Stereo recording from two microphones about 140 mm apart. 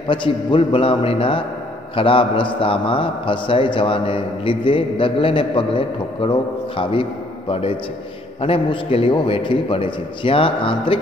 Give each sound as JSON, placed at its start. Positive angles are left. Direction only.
{"t": 0.1, "sound": "a man's voice", "side_deg": 35}